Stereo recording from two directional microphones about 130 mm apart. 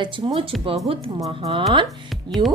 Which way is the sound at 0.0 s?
40° right (ahead or behind).